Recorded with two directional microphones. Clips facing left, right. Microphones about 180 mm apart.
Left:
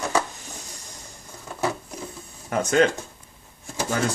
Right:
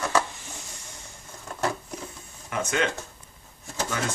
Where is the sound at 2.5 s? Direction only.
40° left (ahead or behind).